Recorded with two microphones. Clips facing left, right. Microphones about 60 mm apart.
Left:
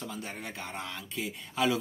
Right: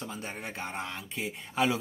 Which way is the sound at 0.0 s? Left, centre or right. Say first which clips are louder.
Right 1 dB; right.